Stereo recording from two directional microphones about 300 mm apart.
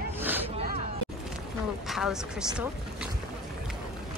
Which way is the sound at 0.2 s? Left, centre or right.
Centre.